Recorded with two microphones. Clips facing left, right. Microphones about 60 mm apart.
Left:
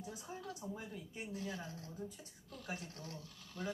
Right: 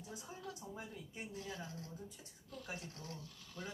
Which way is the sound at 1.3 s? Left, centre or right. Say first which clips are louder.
Left 4 dB; left.